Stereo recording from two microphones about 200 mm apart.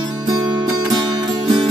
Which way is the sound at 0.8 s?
20° right (ahead or behind).